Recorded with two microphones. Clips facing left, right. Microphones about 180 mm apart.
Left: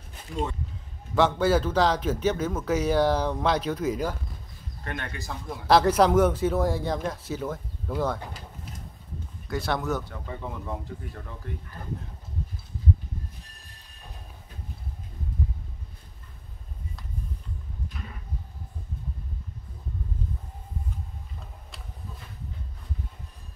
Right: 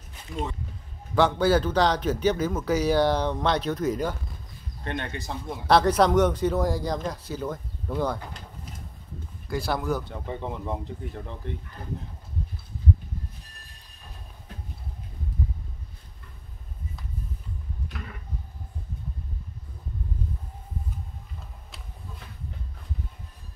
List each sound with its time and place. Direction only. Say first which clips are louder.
1.1 s speech: right 1 dB; centre (ahead or behind)
4.8 s speech: right 3 dB; 25° right (ahead or behind)
5.7 s speech: even; 5° left (ahead or behind)
9.5 s speech: right 1 dB; centre (ahead or behind)
10.0 s speech: right 3 dB; 25° right (ahead or behind)